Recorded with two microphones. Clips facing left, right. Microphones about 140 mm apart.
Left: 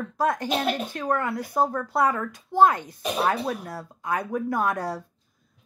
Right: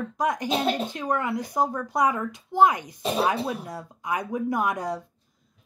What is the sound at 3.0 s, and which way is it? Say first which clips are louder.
Speech: even; 25° right (ahead or behind).